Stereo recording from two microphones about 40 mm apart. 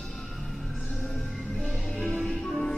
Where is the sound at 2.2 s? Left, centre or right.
Centre.